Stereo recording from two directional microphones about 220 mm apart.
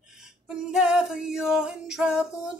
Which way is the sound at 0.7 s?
5° right (ahead or behind).